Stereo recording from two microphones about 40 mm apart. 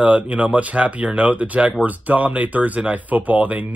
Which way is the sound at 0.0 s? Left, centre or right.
Right.